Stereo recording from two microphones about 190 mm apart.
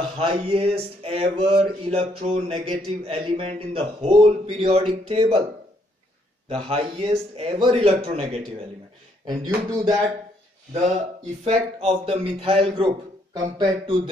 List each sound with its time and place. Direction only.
0.2 s speech: 30° right (ahead or behind)
6.5 s speech: 30° right (ahead or behind)
9.2 s a man's voice: 20° right (ahead or behind)
11.4 s a man's voice: 35° right (ahead or behind)